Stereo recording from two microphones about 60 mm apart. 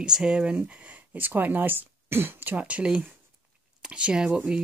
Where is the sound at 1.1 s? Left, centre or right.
Right.